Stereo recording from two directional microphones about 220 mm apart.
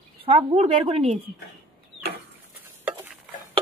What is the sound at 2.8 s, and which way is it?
Stir, 10° right (ahead or behind).